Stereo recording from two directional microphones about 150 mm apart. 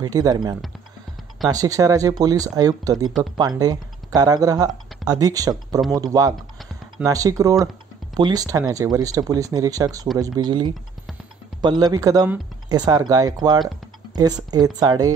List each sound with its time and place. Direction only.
0.0 s speech: 25° right (ahead or behind)